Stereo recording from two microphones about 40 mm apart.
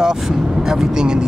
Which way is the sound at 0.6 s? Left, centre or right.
Centre.